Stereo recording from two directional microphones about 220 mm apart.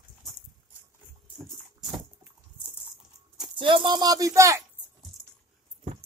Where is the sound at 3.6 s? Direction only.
20° right (ahead or behind).